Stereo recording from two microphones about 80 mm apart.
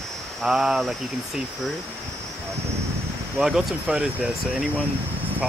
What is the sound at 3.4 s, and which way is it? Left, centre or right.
Speech, centre.